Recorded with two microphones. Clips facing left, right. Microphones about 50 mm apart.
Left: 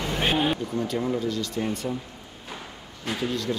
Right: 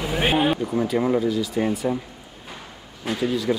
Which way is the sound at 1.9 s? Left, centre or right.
Right.